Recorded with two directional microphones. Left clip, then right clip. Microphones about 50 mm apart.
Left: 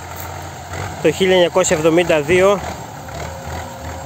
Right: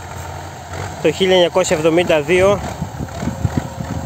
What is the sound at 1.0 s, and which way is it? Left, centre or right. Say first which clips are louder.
Speech: even; centre.